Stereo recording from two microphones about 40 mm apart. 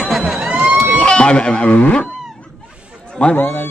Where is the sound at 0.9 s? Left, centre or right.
Left.